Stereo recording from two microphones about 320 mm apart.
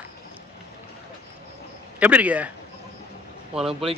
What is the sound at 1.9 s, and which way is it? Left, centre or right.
Speech, centre.